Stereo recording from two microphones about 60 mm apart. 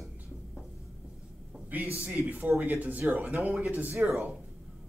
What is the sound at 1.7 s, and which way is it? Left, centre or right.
Speech, right.